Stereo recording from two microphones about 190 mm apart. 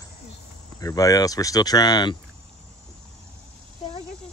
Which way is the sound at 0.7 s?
20° left (ahead or behind).